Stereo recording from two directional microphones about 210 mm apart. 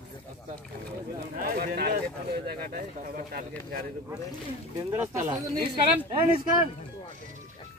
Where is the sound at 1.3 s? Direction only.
45° right (ahead or behind).